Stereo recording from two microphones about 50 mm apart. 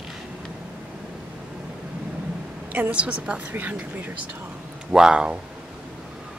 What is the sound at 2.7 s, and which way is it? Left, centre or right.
A woman's voice, right.